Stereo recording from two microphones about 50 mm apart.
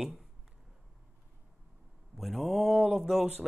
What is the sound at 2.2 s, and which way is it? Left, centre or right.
Speech, centre.